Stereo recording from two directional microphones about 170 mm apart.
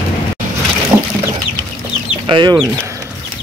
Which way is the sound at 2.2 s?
30° right (ahead or behind).